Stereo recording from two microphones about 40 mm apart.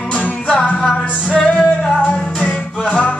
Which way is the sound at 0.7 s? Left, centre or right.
Centre.